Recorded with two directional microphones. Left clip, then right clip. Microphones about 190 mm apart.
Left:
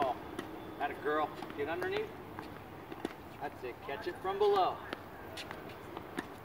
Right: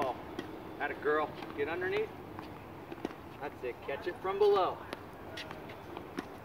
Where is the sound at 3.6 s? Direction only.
40° left (ahead or behind).